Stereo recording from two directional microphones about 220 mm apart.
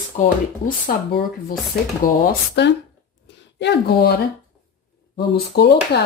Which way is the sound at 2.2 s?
45° left (ahead or behind).